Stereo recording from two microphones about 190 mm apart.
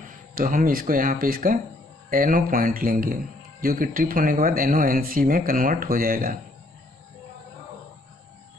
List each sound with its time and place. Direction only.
0.0 s speech: 45° right (ahead or behind)